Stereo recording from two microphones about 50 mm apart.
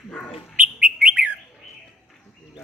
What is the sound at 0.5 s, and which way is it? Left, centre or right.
Bird, right.